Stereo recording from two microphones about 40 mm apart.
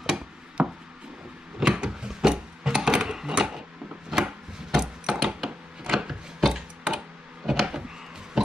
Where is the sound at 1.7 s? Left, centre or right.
Right.